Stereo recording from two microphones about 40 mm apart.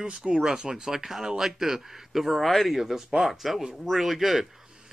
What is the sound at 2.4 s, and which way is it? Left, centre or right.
Speech, centre.